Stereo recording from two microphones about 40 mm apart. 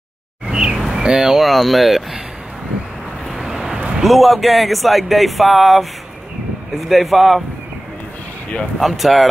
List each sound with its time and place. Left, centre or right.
0.5 s a sound: right
0.7 s a sound: centre
1.0 s speech: centre
1.4 s speech: centre
3.3 s vehicle: centre
4.0 s speech: centre
6.9 s speech: centre
8.7 s speech: centre